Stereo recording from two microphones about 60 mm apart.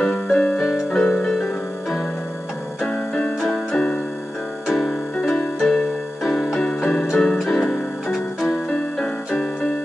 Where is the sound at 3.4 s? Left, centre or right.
Centre.